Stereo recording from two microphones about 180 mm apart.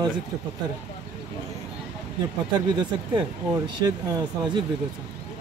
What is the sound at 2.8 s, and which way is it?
Speech, 25° right (ahead or behind).